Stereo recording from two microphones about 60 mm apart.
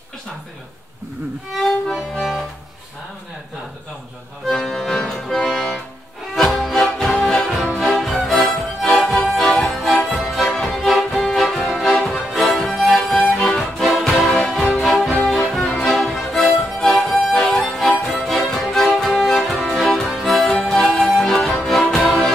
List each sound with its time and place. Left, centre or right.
1.5 s music: centre
4.5 s music: centre
8.0 s music: centre
12.9 s music: centre
13.3 s music: centre